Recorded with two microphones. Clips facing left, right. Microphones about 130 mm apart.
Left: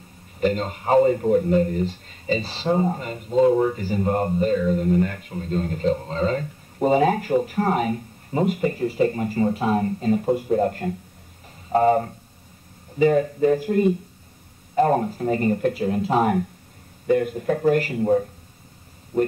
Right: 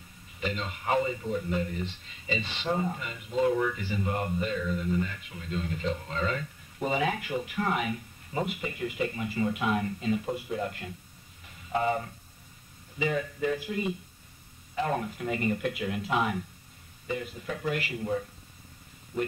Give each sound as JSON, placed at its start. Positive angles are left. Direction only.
{"t": 0.4, "sound": "speech", "side_deg": 45}
{"t": 1.1, "sound": "speech", "side_deg": 50}